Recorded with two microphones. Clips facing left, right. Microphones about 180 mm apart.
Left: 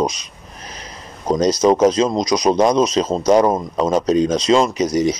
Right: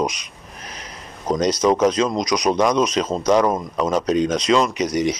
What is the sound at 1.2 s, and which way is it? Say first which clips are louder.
Speech: left 3 dB; 35° left (ahead or behind).